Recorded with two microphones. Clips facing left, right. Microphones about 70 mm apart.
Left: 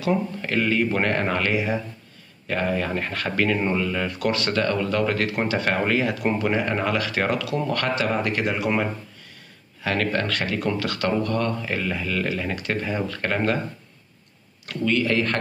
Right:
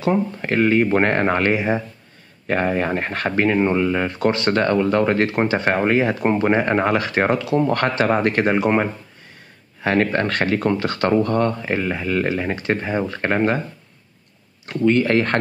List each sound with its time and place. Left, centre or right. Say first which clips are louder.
0.0 s speech: right 4 dB; right
9.8 s speech: right 5 dB; right
14.7 s speech: right 6 dB; right